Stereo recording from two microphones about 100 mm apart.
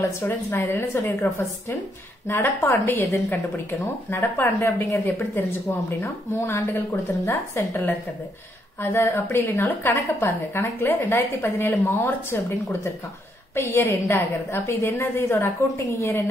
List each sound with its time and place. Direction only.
0.2 s a woman's voice: 25° left (ahead or behind)